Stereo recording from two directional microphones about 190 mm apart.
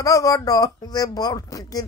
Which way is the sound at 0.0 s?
15° left (ahead or behind).